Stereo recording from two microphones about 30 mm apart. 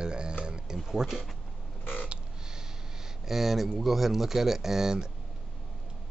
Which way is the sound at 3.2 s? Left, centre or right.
Centre.